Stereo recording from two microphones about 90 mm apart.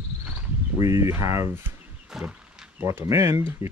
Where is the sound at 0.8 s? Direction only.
35° right (ahead or behind).